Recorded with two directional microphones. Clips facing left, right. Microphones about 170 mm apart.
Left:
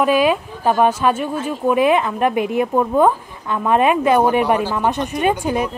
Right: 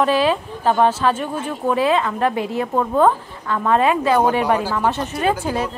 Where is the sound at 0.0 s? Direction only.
15° left (ahead or behind).